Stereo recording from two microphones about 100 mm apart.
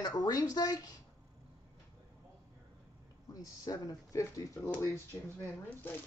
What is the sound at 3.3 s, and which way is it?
Speech, 35° left (ahead or behind).